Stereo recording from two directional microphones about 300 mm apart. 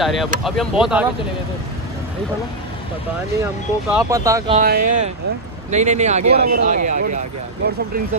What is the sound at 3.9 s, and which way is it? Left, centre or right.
Speech, centre.